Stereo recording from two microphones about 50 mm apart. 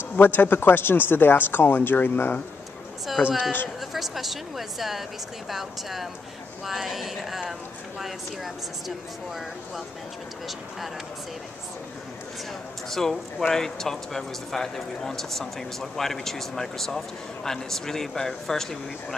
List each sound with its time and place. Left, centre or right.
0.1 s speech: left
3.9 s speech: centre
12.9 s speech: centre